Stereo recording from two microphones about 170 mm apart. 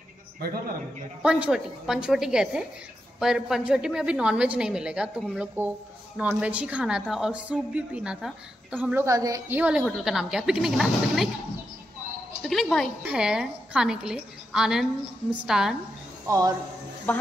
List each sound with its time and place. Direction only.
1.2 s a woman's voice: 5° right (ahead or behind)
9.6 s a woman's voice: 5° right (ahead or behind)
12.4 s a woman's voice: centre (ahead or behind)
16.3 s speech: 20° right (ahead or behind)